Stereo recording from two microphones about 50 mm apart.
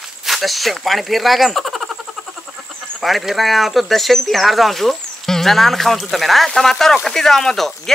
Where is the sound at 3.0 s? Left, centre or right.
Centre.